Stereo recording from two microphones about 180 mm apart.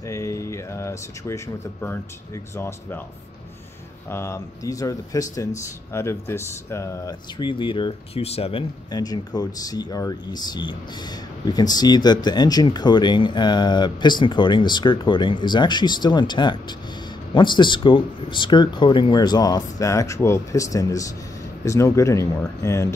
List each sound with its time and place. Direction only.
0.0 s speech: 15° left (ahead or behind)
4.1 s speech: 15° left (ahead or behind)